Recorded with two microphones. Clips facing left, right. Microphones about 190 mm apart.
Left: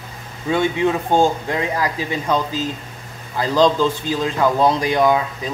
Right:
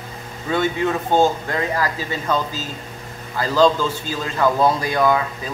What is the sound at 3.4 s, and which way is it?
Speech, 15° left (ahead or behind).